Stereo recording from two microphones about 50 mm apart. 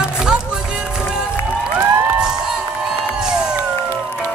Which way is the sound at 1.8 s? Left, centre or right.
Centre.